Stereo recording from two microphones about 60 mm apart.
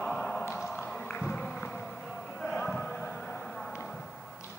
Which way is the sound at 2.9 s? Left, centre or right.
Left.